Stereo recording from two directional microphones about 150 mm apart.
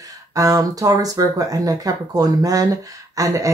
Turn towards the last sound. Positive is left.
turn(degrees=-20)  # may be behind; listen again after turning